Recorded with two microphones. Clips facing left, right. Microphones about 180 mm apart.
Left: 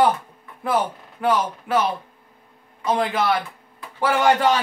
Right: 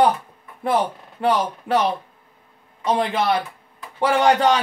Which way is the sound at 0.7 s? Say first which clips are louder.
Right 1 dB; 30° right (ahead or behind).